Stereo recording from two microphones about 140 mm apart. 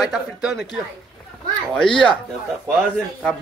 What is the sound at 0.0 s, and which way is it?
Speech, centre (ahead or behind).